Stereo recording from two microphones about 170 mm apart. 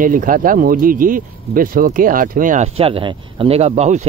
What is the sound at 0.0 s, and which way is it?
Speech, 50° right (ahead or behind).